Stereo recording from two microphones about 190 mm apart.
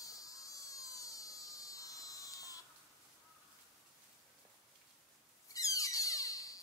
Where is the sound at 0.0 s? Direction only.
20° left (ahead or behind).